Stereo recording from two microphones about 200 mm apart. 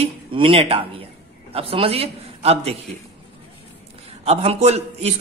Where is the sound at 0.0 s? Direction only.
25° right (ahead or behind).